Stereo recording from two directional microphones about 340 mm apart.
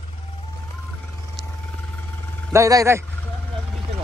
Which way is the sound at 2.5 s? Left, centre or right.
Centre.